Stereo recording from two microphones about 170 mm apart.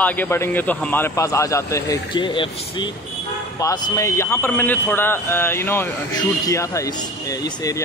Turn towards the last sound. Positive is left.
turn(degrees=20)  # may be behind; listen again after turning